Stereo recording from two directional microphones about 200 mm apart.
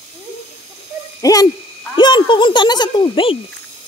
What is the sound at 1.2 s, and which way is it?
Speech, 15° left (ahead or behind).